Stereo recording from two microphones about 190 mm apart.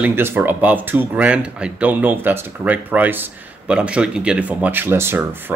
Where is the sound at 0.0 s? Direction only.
10° right (ahead or behind).